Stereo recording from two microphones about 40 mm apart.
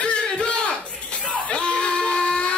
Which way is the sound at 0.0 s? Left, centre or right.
Left.